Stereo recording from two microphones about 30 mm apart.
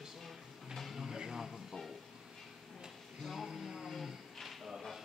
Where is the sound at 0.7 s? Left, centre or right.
Centre.